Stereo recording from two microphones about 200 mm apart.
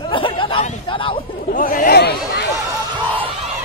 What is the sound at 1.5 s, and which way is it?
Speech, 45° left (ahead or behind).